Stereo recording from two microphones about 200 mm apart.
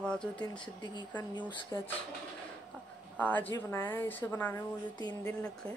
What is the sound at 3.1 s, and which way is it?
A woman's voice, 10° left (ahead or behind).